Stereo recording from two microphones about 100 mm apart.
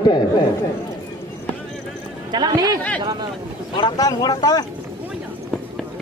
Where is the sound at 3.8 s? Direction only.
45° left (ahead or behind).